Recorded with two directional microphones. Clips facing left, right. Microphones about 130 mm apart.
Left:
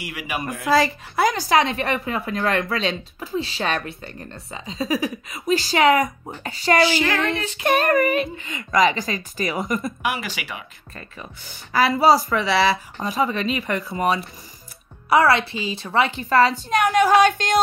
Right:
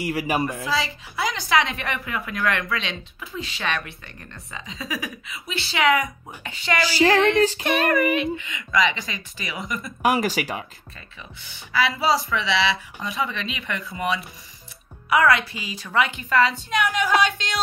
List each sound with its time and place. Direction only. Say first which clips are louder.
0.1 s speech: right 6 dB; 35° right (ahead or behind)
0.7 s speech: left 7 dB; 50° left (ahead or behind)
6.8 s speech: right 4 dB; 35° right (ahead or behind)
7.2 s speech: right 6 dB; 40° left (ahead or behind)
10.0 s speech: right 5 dB; 40° right (ahead or behind)
11.4 s speech: left 4 dB; 45° left (ahead or behind)
15.0 s speech: left 2 dB; 30° left (ahead or behind); by 17.6 s 50° left (ahead or behind)